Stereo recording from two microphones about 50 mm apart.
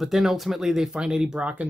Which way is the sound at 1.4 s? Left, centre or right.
Right.